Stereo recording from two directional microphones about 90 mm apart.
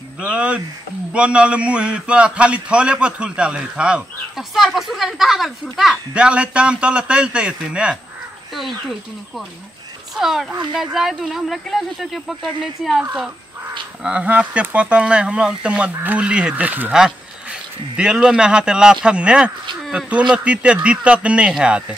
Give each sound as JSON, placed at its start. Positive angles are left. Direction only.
{"t": 0.2, "sound": "a man's voice", "side_deg": -15}
{"t": 10.1, "sound": "speech", "side_deg": -5}
{"t": 14.0, "sound": "a man's voice", "side_deg": -15}
{"t": 17.9, "sound": "a man's voice", "side_deg": -10}